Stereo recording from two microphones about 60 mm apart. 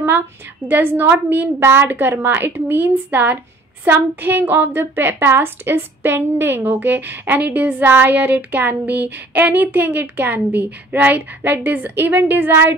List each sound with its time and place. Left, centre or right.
0.7 s a woman's voice: right